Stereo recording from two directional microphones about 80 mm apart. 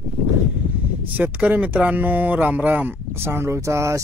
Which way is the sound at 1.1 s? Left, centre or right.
Right.